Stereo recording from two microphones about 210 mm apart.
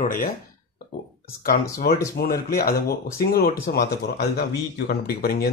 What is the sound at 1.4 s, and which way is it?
Speech, 45° left (ahead or behind).